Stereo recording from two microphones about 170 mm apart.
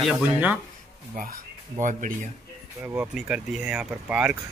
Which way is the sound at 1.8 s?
50° right (ahead or behind).